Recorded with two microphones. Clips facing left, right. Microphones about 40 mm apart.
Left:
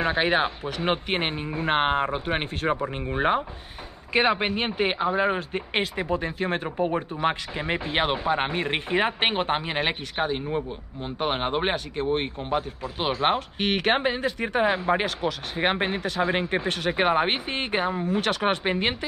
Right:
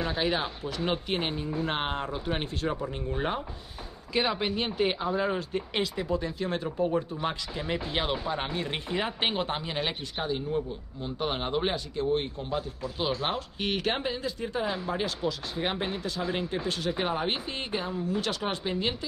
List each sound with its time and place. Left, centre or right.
0.0 s speech: left